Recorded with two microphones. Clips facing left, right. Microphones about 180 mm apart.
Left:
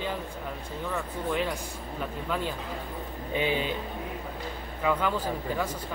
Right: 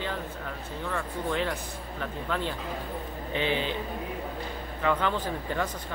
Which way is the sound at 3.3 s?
10° left (ahead or behind).